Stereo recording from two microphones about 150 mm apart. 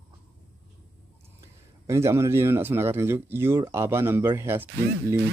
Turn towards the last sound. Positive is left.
turn(degrees=-15)  # may be behind; listen again after turning